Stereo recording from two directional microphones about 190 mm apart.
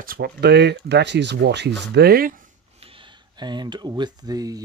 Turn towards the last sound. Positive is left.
turn(degrees=-20)  # may be behind; listen again after turning